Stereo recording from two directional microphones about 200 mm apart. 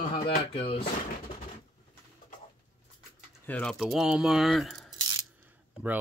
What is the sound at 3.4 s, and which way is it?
Speech, 5° left (ahead or behind).